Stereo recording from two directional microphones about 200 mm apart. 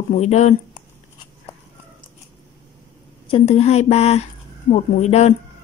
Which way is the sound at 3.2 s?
30° left (ahead or behind).